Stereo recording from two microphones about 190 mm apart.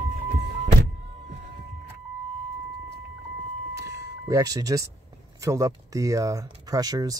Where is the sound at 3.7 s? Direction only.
15° right (ahead or behind).